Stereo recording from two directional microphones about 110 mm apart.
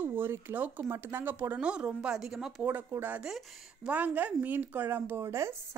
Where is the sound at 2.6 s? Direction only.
20° right (ahead or behind).